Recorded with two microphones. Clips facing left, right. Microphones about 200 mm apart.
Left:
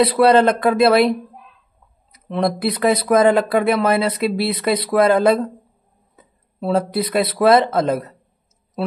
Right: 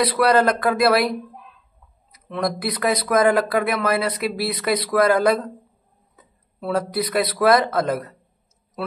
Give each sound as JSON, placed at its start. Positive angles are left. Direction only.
{"t": 0.0, "sound": "speech", "side_deg": 25}
{"t": 2.1, "sound": "speech", "side_deg": 25}